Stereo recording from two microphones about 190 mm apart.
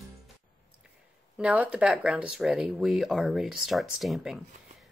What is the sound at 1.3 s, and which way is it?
Speech, 5° right (ahead or behind).